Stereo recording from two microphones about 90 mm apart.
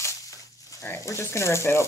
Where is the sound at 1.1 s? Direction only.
30° left (ahead or behind).